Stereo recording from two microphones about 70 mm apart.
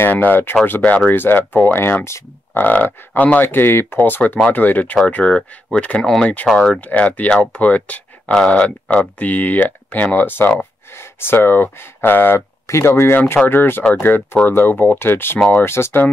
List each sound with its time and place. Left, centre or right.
0.0 s speech: left
3.4 s speech: left
5.0 s speech: centre
6.9 s speech: left